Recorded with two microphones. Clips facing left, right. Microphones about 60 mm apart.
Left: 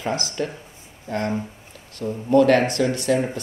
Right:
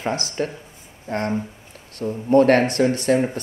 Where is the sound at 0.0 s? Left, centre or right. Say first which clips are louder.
Right 1 dB; right.